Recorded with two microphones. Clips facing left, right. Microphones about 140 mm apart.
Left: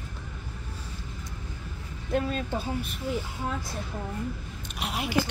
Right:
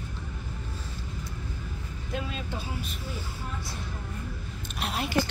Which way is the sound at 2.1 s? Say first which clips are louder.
Left 7 dB; 45° left (ahead or behind).